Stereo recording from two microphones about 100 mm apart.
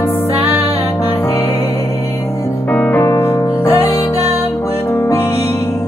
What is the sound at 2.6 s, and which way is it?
Music, 15° left (ahead or behind).